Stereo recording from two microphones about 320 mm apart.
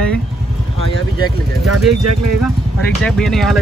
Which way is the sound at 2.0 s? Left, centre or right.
Right.